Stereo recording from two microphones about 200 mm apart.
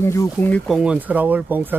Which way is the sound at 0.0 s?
15° left (ahead or behind).